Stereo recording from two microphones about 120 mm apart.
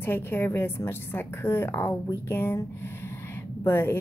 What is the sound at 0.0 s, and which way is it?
A woman's voice, 20° left (ahead or behind).